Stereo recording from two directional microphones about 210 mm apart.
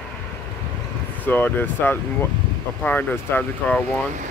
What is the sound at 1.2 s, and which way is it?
Speech, 10° left (ahead or behind).